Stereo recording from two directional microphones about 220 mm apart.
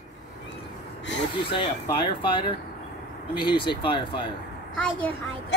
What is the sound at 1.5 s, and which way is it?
Speech, 25° left (ahead or behind).